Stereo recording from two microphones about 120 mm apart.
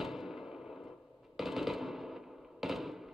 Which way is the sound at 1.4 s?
Centre (ahead or behind).